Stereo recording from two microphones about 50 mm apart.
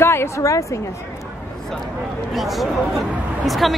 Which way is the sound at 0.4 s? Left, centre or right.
Left.